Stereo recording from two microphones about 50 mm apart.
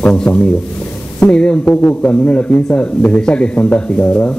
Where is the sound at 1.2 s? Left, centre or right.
Centre.